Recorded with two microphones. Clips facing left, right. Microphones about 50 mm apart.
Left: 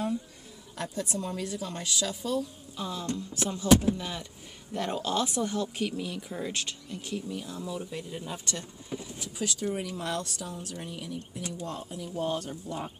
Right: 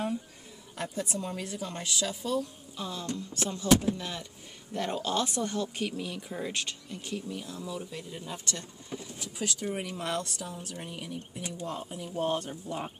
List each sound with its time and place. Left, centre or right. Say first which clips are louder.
0.7 s a woman's voice: left 1 dB; centre
2.8 s speech: left 2 dB; centre
7.4 s speech: left 2 dB; centre
9.4 s a woman's voice: left 2 dB; centre
9.8 s speech: even; right